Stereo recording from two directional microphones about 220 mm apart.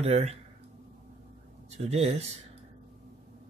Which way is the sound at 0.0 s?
30° right (ahead or behind).